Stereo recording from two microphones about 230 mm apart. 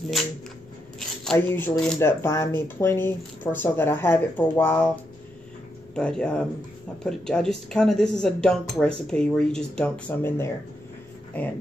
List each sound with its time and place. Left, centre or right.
0.9 s speech: centre
5.9 s speech: centre